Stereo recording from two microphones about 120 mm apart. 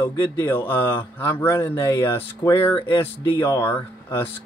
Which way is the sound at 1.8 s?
35° left (ahead or behind).